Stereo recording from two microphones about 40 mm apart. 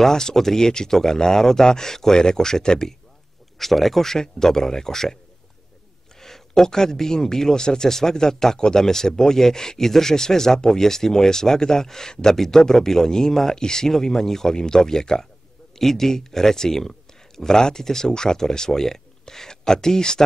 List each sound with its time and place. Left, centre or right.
0.0 s speech: centre
3.5 s speech: centre
6.1 s speech: centre